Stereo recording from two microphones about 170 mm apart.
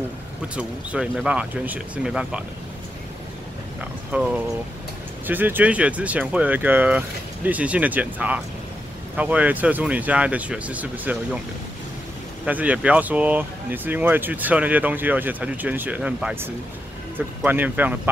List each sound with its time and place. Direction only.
0.6 s speech: 5° right (ahead or behind)
4.1 s speech: 10° right (ahead or behind)
12.4 s speech: 10° right (ahead or behind)